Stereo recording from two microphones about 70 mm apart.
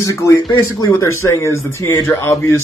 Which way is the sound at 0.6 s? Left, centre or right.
Left.